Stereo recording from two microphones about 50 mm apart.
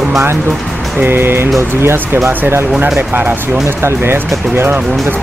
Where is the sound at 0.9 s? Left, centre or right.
Right.